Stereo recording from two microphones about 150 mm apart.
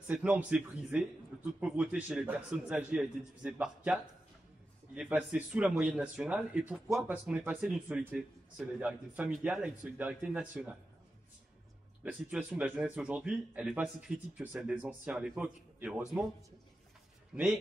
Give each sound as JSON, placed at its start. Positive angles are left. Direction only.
{"t": 0.1, "sound": "speech", "side_deg": -10}
{"t": 12.0, "sound": "speech", "side_deg": -10}
{"t": 17.3, "sound": "a man's voice", "side_deg": -5}